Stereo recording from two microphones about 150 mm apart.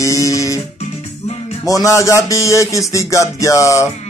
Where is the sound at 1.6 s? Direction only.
25° left (ahead or behind).